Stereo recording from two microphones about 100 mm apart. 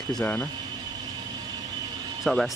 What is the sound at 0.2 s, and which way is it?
Speech, 15° left (ahead or behind).